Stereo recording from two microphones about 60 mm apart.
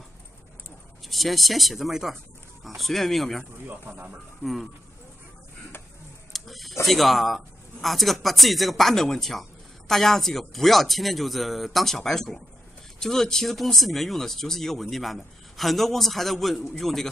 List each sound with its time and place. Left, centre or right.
1.0 s speech: centre
3.6 s speech: right
4.4 s speech: centre
6.3 s speech: centre